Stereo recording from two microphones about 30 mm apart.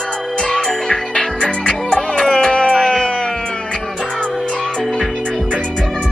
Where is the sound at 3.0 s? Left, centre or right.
Left.